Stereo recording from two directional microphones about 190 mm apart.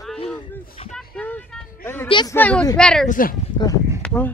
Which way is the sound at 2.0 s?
25° left (ahead or behind).